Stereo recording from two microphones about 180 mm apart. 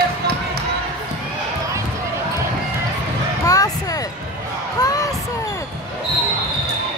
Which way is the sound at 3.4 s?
20° left (ahead or behind).